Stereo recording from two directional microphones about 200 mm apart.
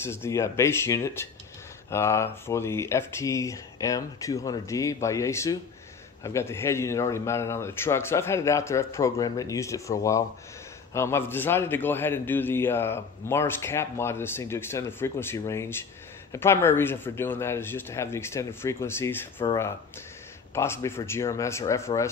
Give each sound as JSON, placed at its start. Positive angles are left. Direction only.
{"t": 0.0, "sound": "a man's voice", "side_deg": 10}